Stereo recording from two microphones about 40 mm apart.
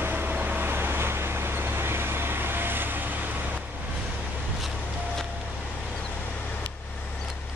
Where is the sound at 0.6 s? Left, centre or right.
Right.